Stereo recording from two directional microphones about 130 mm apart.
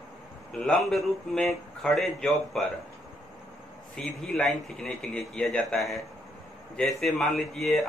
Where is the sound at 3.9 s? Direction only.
5° left (ahead or behind).